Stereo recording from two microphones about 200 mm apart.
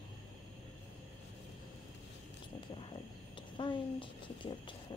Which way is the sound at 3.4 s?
25° left (ahead or behind).